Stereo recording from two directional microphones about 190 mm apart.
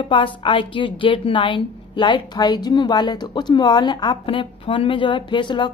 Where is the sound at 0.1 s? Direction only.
25° left (ahead or behind).